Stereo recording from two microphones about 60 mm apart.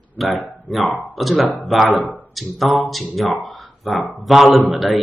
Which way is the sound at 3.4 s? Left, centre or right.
Centre.